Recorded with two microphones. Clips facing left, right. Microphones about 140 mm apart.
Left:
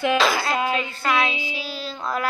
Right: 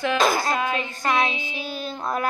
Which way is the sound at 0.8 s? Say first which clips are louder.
Even; 20° right (ahead or behind).